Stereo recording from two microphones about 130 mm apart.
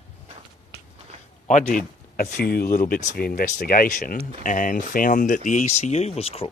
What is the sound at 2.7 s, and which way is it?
Speech, 90° left.